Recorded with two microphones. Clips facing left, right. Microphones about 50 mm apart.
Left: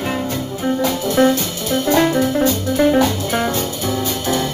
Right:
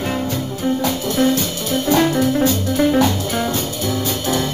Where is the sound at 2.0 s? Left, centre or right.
Centre.